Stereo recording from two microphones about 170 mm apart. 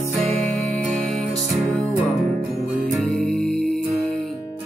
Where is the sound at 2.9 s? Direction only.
Centre (ahead or behind).